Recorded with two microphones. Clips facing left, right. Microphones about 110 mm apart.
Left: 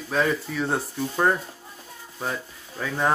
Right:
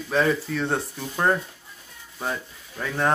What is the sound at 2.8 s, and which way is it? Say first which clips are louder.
Speech: left 1 dB; centre (ahead or behind).